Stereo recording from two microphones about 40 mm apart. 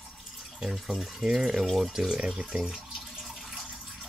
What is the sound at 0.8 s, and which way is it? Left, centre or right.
Speech, centre.